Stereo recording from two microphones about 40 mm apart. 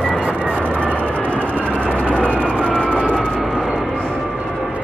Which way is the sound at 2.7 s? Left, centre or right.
Left.